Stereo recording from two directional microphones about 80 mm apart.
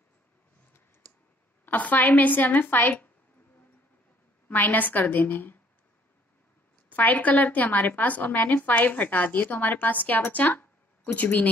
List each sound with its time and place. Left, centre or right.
1.7 s a woman's voice: left
4.5 s a woman's voice: left
6.9 s a woman's voice: left